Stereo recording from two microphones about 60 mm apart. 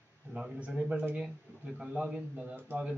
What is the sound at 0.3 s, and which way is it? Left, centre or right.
A man's voice, centre.